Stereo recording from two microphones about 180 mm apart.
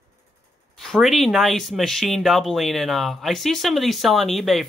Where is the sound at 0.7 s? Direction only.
Centre (ahead or behind).